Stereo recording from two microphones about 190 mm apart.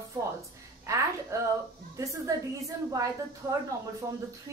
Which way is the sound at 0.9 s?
15° right (ahead or behind).